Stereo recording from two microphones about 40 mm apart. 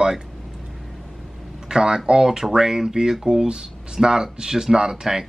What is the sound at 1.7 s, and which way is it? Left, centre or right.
Speech, centre.